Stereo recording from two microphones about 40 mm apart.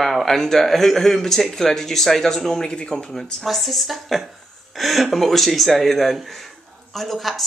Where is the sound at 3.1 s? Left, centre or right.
Centre.